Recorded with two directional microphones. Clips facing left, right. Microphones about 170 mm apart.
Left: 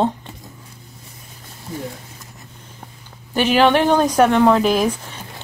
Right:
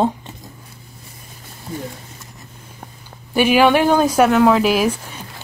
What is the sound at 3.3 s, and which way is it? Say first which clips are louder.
Speech: right 1 dB; 10° right (ahead or behind).